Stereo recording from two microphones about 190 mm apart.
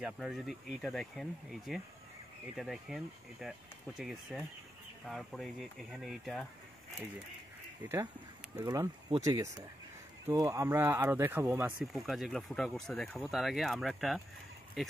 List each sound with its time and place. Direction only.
0.0 s speech: centre (ahead or behind)
7.9 s speech: 15° right (ahead or behind)